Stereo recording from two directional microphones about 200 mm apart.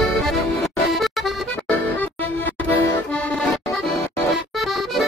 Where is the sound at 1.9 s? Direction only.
10° left (ahead or behind).